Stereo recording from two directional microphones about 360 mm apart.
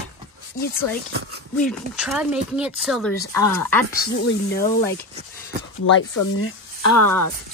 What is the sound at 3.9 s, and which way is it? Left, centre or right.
Speech, left.